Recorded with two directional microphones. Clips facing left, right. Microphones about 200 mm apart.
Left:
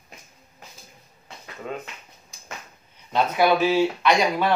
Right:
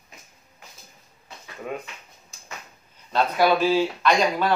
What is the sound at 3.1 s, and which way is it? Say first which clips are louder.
Speech: even; 15° left (ahead or behind).